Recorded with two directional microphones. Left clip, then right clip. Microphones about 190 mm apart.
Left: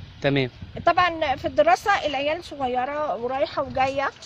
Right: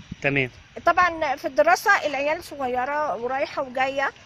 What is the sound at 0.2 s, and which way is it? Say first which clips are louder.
Speech: even; 20° left (ahead or behind).